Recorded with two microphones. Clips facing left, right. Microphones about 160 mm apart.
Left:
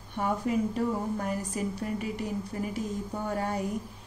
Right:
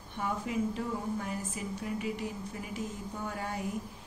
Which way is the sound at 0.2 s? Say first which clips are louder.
Left 5 dB; 50° left (ahead or behind).